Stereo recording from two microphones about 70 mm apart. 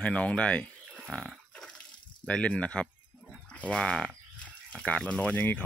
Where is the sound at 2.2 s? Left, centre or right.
Centre.